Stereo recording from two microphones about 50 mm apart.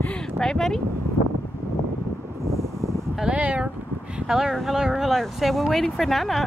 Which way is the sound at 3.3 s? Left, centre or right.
Right.